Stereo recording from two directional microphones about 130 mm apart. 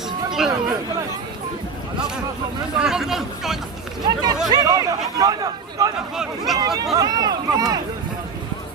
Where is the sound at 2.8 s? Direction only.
5° right (ahead or behind).